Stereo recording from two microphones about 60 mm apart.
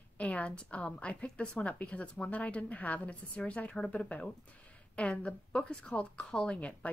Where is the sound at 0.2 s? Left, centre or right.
Left.